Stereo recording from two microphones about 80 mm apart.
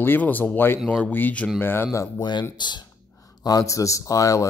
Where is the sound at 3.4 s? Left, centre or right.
Left.